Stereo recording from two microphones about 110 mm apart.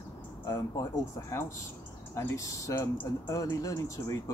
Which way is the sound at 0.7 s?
25° left (ahead or behind).